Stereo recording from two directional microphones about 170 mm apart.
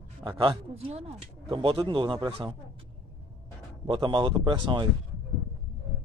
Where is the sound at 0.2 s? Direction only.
30° right (ahead or behind).